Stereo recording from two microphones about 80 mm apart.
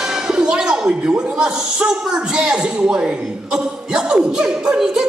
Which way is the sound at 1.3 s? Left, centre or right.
Centre.